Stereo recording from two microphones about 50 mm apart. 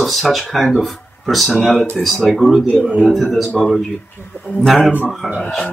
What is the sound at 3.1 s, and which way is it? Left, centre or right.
Speech, centre.